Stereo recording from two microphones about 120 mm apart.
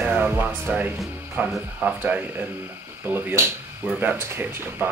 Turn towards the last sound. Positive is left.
turn(degrees=-15)  # may be behind; listen again after turning